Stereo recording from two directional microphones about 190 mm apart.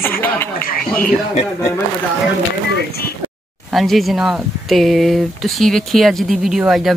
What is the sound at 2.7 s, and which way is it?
Speech, 55° left (ahead or behind).